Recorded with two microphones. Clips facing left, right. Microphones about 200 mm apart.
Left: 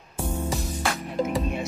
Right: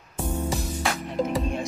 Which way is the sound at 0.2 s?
10° left (ahead or behind).